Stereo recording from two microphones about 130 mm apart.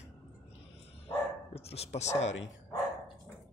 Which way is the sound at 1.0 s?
50° left (ahead or behind).